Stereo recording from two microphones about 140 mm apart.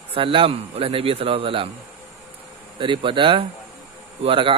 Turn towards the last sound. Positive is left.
turn(degrees=-40)  # may be behind; listen again after turning